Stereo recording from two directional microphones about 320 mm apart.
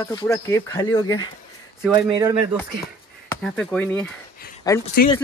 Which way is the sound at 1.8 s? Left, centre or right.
Centre.